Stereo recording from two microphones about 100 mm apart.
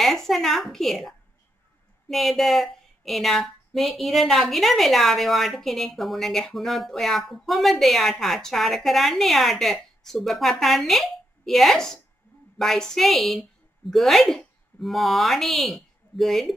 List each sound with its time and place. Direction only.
0.0 s a woman's voice: centre (ahead or behind)